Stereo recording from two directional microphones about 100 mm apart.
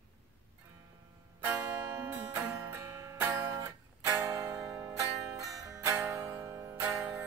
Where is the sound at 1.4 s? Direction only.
15° right (ahead or behind).